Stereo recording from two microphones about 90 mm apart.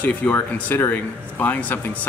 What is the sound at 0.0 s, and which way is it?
Speech, 15° left (ahead or behind).